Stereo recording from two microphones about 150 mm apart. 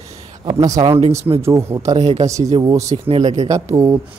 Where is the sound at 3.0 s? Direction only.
40° right (ahead or behind).